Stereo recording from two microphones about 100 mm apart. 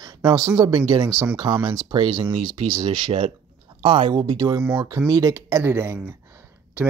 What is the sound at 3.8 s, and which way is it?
Speech, 60° right (ahead or behind).